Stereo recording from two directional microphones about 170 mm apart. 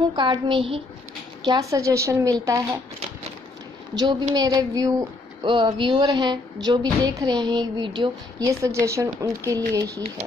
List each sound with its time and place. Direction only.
0.1 s speech: 30° right (ahead or behind)
3.9 s speech: 25° right (ahead or behind)